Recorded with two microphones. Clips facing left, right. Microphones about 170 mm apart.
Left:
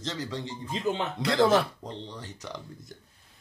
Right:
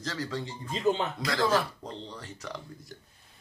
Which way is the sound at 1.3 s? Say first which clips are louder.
Left 5 dB; 20° left (ahead or behind).